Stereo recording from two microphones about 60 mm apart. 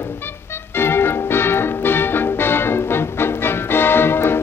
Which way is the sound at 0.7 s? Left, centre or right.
Left.